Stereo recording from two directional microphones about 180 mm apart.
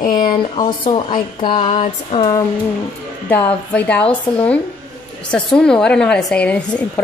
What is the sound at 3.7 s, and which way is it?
A woman's voice, 10° left (ahead or behind).